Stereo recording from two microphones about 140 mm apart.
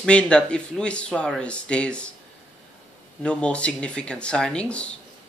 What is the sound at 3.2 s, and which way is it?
Speech, 5° left (ahead or behind).